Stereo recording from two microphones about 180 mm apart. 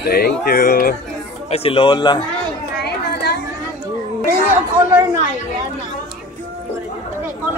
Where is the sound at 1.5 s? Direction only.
30° left (ahead or behind).